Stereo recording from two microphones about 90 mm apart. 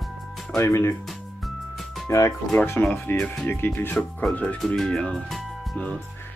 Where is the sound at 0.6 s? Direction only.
30° left (ahead or behind).